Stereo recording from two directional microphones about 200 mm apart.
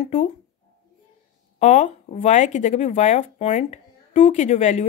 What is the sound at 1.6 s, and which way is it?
Speech, 35° left (ahead or behind).